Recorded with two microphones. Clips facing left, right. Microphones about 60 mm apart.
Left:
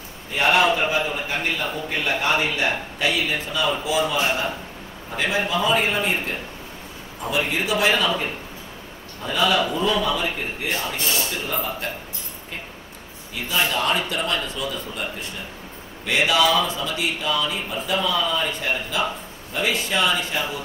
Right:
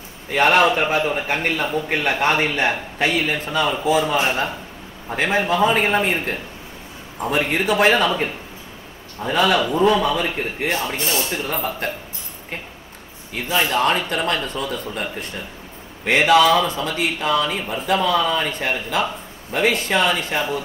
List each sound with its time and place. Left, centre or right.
0.3 s a man's voice: right
0.7 s a man's voice: right
5.1 s a man's voice: right
10.7 s speech: right
11.3 s a man's voice: right
13.3 s a man's voice: right